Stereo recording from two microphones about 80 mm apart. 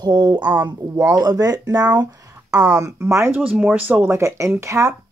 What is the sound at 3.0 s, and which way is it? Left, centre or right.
Speech, right.